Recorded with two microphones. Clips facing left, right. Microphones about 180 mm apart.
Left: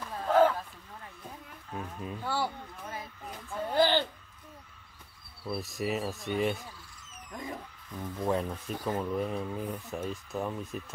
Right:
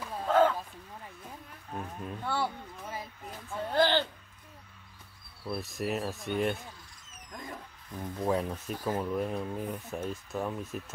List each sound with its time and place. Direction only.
0.0 s a sound: 5° right (ahead or behind)
0.3 s a sound: 5° left (ahead or behind)
1.7 s speech: centre (ahead or behind)
3.6 s music: 10° left (ahead or behind)
5.5 s speech: centre (ahead or behind)
8.0 s speech: centre (ahead or behind)